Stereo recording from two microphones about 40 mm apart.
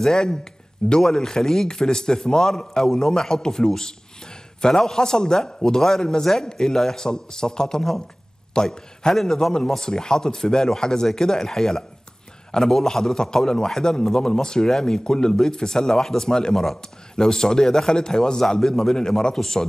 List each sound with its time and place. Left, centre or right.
0.0 s a man's voice: centre